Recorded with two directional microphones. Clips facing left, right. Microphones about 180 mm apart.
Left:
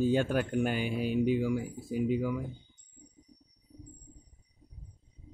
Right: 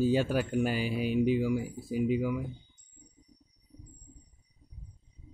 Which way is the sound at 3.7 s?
35° left (ahead or behind).